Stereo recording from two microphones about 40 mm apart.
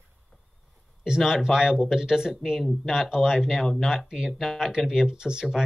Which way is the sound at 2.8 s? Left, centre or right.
Centre.